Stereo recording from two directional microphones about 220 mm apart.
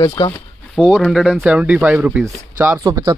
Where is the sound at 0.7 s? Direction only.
10° right (ahead or behind).